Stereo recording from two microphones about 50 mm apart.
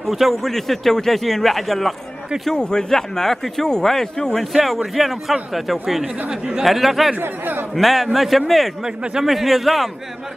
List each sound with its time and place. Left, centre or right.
0.0 s speech: centre
2.5 s speech: centre
4.6 s speech: centre
7.2 s speech: right
7.7 s speech: centre
8.8 s a man's voice: centre
9.2 s speech: centre